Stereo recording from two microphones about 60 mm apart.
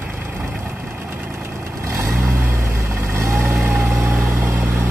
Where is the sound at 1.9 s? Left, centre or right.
Right.